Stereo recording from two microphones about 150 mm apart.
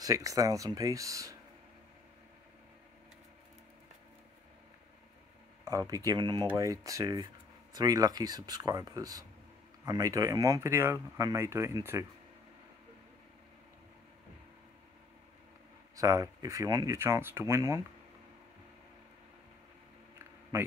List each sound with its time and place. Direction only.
0.0 s speech: 20° right (ahead or behind)
5.7 s speech: 25° right (ahead or behind)
16.0 s speech: 25° right (ahead or behind)